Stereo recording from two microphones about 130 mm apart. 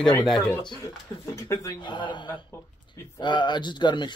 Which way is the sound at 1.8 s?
35° left (ahead or behind).